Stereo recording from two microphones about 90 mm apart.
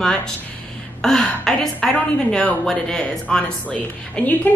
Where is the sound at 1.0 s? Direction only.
5° left (ahead or behind).